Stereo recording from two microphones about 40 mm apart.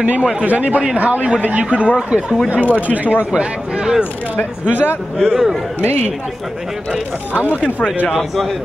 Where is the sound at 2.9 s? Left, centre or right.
Right.